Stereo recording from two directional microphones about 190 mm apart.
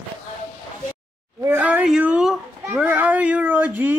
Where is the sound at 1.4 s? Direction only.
10° right (ahead or behind).